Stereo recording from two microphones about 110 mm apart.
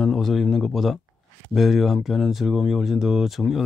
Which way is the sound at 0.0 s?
5° left (ahead or behind).